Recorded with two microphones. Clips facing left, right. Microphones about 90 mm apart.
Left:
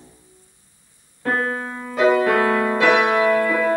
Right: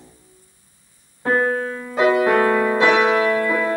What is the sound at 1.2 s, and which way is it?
Keyboard, 20° right (ahead or behind).